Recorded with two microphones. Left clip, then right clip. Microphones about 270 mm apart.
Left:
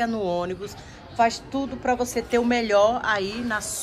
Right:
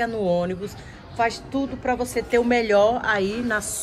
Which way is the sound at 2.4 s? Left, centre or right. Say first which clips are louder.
Right 1 dB; centre.